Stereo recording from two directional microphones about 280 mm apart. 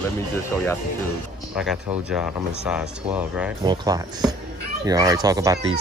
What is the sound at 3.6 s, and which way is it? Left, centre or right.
Speech, centre.